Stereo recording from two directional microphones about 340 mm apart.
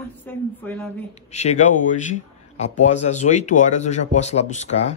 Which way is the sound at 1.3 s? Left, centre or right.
Centre.